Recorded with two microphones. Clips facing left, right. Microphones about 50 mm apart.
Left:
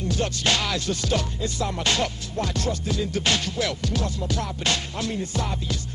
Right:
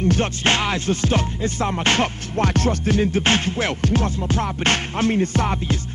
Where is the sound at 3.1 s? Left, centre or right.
Right.